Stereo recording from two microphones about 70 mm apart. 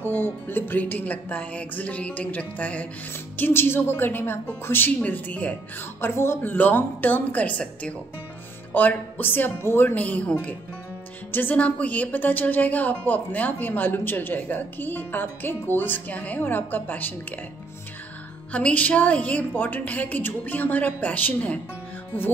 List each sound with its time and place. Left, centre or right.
0.0 s speech: left
3.3 s a woman's voice: left
11.3 s speech: left
18.5 s speech: centre